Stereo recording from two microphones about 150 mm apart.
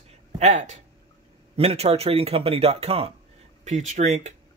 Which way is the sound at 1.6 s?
45° right (ahead or behind).